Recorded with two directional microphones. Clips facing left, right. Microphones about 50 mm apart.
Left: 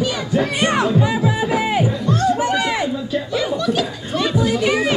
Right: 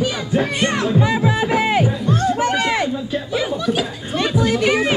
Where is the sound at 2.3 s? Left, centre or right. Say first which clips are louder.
Right 1 dB; right.